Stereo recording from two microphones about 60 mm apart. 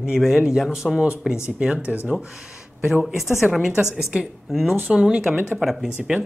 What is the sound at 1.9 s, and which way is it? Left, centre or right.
A woman's voice, centre.